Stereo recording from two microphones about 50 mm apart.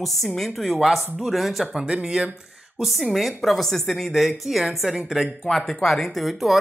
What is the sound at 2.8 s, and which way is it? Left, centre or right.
Speech, centre.